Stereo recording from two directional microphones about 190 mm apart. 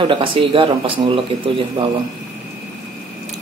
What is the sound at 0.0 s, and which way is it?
Speech, 25° right (ahead or behind).